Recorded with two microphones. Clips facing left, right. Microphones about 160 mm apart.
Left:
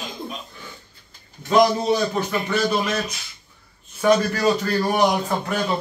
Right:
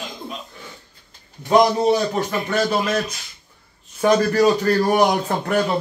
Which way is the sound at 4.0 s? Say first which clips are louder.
Right 3 dB; 50° right (ahead or behind).